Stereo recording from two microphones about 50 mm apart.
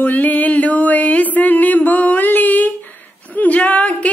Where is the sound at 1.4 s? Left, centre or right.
Left.